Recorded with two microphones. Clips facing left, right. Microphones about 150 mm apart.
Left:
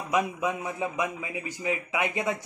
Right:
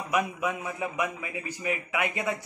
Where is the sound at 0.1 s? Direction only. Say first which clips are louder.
Left 1 dB; 20° left (ahead or behind).